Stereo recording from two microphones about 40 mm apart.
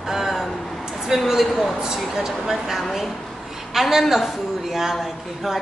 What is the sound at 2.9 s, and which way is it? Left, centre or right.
Speech, centre.